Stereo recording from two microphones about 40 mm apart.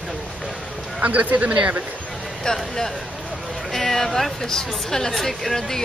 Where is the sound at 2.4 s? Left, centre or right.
Centre.